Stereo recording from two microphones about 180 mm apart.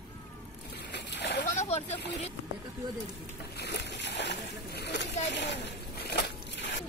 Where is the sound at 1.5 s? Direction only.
35° left (ahead or behind).